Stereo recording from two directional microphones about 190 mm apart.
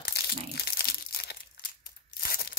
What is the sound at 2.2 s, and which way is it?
Tearing, 55° left (ahead or behind).